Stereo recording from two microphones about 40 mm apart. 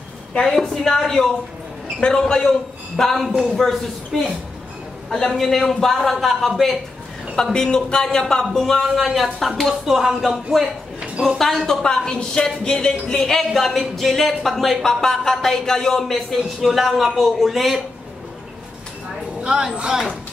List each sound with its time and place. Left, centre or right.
0.3 s a woman's voice: left
0.6 s a woman's voice: centre
5.3 s speech: centre
7.5 s a woman's voice: centre
11.0 s a sound: centre
11.6 s a woman's voice: centre
16.6 s speech: centre
19.4 s speech: right